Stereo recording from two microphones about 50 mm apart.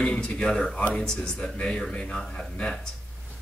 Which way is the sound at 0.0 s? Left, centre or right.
Centre.